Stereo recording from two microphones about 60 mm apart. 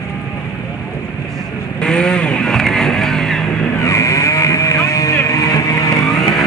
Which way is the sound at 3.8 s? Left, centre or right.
Left.